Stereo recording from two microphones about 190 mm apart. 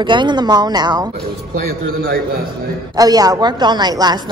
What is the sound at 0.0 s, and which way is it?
A woman's voice, 25° right (ahead or behind).